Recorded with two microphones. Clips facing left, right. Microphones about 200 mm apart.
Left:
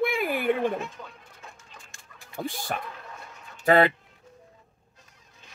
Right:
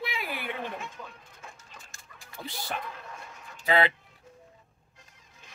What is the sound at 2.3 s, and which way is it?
A man's voice, 50° left (ahead or behind).